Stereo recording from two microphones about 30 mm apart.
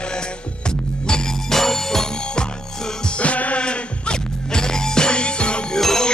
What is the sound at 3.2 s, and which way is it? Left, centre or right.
Music, left.